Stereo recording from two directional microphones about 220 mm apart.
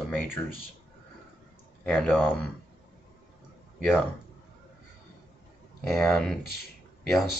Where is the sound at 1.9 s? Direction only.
Centre (ahead or behind).